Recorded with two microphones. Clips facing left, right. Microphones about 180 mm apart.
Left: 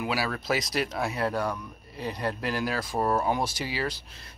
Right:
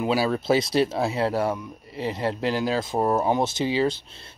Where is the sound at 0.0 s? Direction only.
25° right (ahead or behind).